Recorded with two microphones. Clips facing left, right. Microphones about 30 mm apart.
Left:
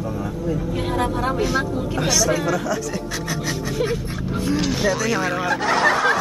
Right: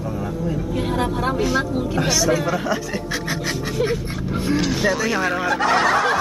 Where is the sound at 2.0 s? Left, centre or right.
Centre.